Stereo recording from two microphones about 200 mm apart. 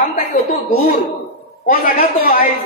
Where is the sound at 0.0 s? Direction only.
40° left (ahead or behind).